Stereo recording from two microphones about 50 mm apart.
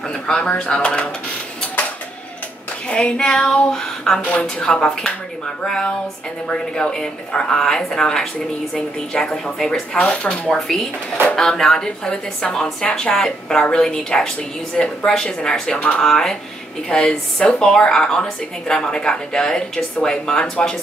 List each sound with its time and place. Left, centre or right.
0.4 s a woman's voice: left
2.9 s a woman's voice: left
4.2 s a woman's voice: left
11.3 s a woman's voice: centre